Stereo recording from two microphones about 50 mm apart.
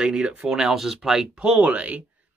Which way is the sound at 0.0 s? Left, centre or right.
Centre.